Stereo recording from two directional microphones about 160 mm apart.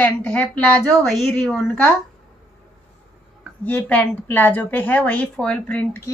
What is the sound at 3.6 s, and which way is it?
A woman's voice, 10° left (ahead or behind).